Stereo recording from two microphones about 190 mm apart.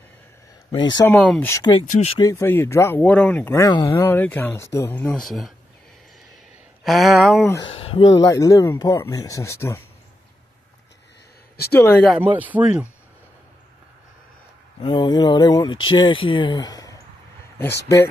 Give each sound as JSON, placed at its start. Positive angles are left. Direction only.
{"t": 0.7, "sound": "speech", "side_deg": 25}
{"t": 1.0, "sound": "speech", "side_deg": 5}
{"t": 1.5, "sound": "speech", "side_deg": 25}
{"t": 1.9, "sound": "speech", "side_deg": 35}
{"t": 2.1, "sound": "speech", "side_deg": 15}
{"t": 6.8, "sound": "speech", "side_deg": 0}
{"t": 7.6, "sound": "speech", "side_deg": 30}
{"t": 8.2, "sound": "speech", "side_deg": 20}
{"t": 11.7, "sound": "speech", "side_deg": 10}
{"t": 12.2, "sound": "speech", "side_deg": -10}
{"t": 14.8, "sound": "speech", "side_deg": 25}